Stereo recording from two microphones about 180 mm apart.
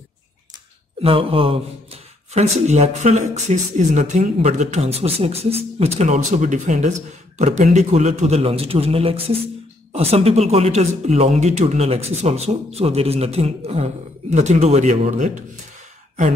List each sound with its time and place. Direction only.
1.0 s speech: 30° right (ahead or behind)